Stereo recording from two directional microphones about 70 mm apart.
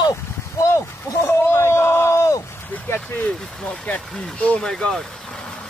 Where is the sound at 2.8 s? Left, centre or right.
Left; by 5.0 s centre.